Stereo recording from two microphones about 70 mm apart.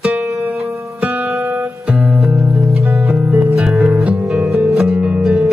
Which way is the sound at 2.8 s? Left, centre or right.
Centre.